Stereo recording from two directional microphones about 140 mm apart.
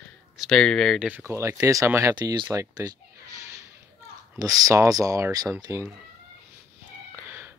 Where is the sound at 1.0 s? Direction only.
15° right (ahead or behind).